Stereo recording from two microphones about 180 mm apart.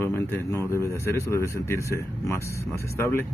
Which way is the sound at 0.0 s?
10° left (ahead or behind).